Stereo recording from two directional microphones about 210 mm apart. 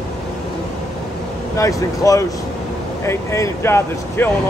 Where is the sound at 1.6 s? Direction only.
15° left (ahead or behind).